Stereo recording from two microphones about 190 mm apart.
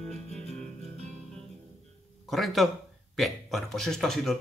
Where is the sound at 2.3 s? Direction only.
Centre (ahead or behind).